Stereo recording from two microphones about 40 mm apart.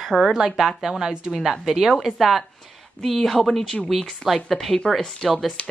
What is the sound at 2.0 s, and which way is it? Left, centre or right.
Speech, centre.